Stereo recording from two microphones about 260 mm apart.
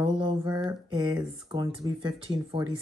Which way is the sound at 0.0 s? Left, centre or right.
Right.